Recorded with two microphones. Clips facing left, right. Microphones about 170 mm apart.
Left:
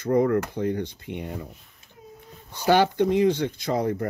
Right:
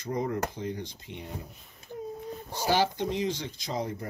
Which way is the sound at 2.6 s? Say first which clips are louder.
Left 7 dB; 60° left (ahead or behind).